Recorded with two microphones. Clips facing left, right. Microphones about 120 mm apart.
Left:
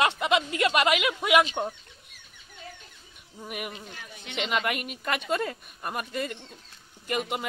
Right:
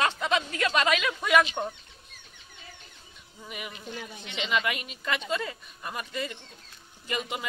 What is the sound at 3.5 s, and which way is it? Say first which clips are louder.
Speech: left 2 dB; 55° left (ahead or behind).